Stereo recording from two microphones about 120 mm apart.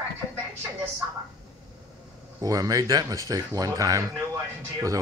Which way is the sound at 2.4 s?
30° right (ahead or behind).